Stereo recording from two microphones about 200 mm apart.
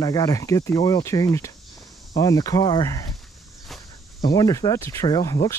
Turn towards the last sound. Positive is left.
turn(degrees=15)  # may be behind; listen again after turning